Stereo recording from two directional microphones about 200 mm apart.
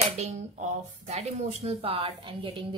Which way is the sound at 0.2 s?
35° right (ahead or behind).